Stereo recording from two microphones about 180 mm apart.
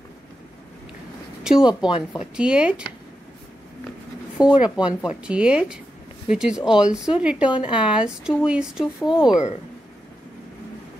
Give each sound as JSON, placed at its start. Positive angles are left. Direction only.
{"t": 1.4, "sound": "speech", "side_deg": -5}
{"t": 1.9, "sound": "speech", "side_deg": 30}
{"t": 2.3, "sound": "speech", "side_deg": -5}
{"t": 4.4, "sound": "a woman's voice", "side_deg": -5}